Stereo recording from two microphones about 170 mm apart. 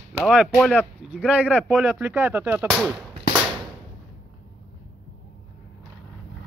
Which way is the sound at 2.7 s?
Centre (ahead or behind).